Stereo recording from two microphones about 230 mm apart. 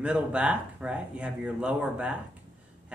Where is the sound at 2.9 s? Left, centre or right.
Centre.